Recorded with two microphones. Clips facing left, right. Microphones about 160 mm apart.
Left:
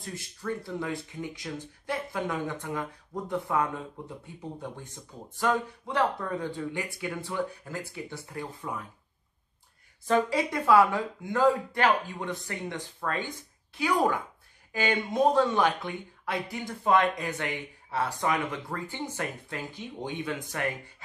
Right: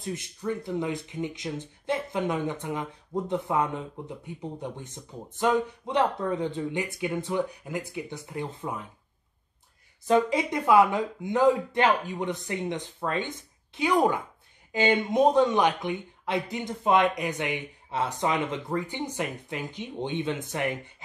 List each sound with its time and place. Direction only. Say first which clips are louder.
0.0 s speech: right 4 dB; 20° right (ahead or behind)
10.0 s speech: right 2 dB; 20° right (ahead or behind)